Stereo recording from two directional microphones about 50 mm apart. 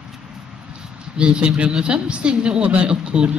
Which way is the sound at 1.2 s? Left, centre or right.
Centre.